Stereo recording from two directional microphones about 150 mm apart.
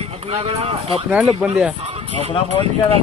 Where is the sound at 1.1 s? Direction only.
5° right (ahead or behind).